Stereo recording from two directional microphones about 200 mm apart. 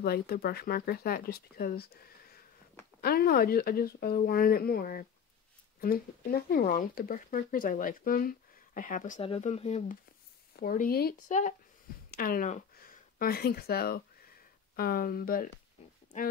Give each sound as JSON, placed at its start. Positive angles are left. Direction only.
{"t": 0.0, "sound": "speech", "side_deg": 50}
{"t": 9.2, "sound": "speech", "side_deg": 30}
{"t": 10.5, "sound": "speech", "side_deg": 45}
{"t": 12.1, "sound": "a sound", "side_deg": 45}
{"t": 14.8, "sound": "speech", "side_deg": 50}